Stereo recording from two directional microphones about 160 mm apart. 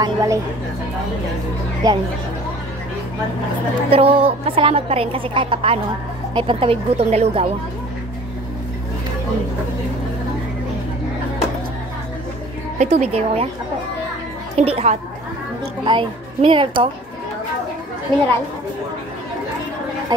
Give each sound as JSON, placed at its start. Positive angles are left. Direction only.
{"t": 0.0, "sound": "a woman's voice", "side_deg": -20}
{"t": 1.8, "sound": "a woman's voice", "side_deg": -25}
{"t": 3.9, "sound": "a woman's voice", "side_deg": -35}
{"t": 12.7, "sound": "a woman's voice", "side_deg": -45}
{"t": 14.6, "sound": "a woman's voice", "side_deg": -40}
{"t": 20.1, "sound": "a woman's voice", "side_deg": -25}